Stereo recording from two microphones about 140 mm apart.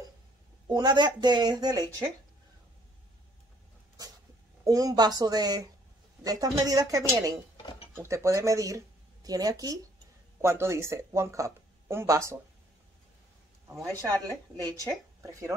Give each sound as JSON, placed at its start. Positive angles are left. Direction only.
{"t": 0.7, "sound": "speech", "side_deg": -30}
{"t": 4.6, "sound": "speech", "side_deg": -25}
{"t": 14.8, "sound": "speech", "side_deg": -25}